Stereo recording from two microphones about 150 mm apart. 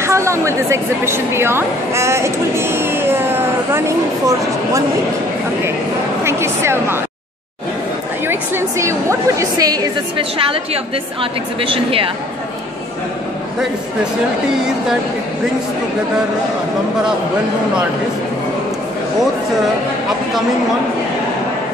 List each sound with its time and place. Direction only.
0.0 s a woman's voice: 20° right (ahead or behind)
6.2 s speech: 15° right (ahead or behind)
8.3 s a woman's voice: 15° right (ahead or behind)
10.1 s a woman's voice: 35° right (ahead or behind)